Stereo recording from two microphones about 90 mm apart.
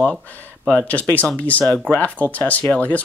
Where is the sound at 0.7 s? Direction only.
15° left (ahead or behind).